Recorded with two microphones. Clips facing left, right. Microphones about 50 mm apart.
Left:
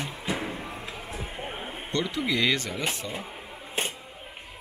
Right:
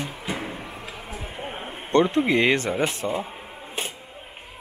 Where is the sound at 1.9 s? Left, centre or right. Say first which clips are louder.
Right 9 dB; right.